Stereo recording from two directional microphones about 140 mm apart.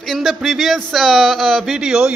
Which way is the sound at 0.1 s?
Centre (ahead or behind).